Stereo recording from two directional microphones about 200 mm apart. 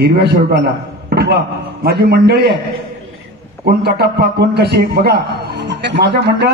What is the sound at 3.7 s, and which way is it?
A man's voice, 50° right (ahead or behind).